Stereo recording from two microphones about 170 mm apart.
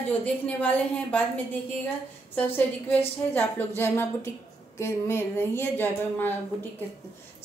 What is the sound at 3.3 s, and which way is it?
A woman's voice, 10° left (ahead or behind).